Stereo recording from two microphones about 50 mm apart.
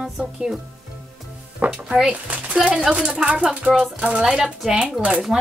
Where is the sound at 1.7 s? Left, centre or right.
Centre.